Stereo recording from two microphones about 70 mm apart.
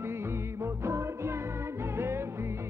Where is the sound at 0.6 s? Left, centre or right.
Right.